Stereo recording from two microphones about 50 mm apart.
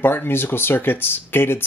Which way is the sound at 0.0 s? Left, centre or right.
Left.